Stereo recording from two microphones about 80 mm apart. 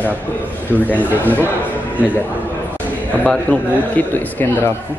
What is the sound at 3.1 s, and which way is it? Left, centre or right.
A man's voice, centre.